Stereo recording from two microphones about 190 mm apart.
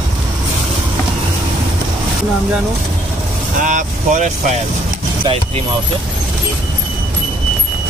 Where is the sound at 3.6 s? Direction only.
40° right (ahead or behind).